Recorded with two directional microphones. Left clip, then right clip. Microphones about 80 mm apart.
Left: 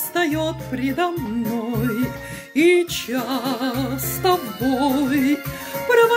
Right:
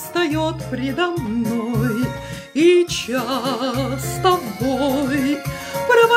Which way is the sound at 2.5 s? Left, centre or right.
Right.